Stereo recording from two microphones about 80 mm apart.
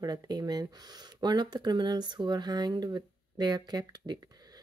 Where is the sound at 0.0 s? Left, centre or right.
Right.